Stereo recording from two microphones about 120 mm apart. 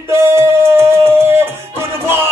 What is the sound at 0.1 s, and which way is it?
Music, 20° right (ahead or behind).